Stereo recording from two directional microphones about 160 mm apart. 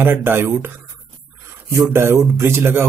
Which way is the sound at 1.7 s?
15° right (ahead or behind).